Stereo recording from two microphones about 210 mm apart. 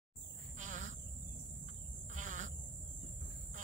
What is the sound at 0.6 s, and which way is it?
Insect, 35° right (ahead or behind).